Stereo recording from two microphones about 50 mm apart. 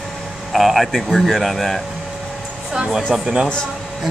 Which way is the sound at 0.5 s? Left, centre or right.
Centre.